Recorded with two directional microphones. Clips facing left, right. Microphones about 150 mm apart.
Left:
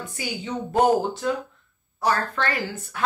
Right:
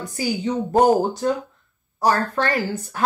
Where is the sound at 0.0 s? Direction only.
35° right (ahead or behind).